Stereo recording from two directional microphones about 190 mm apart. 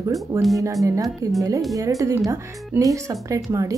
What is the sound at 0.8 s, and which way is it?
Speech, 15° right (ahead or behind).